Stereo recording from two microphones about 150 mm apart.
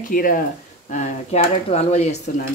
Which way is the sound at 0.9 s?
55° left (ahead or behind).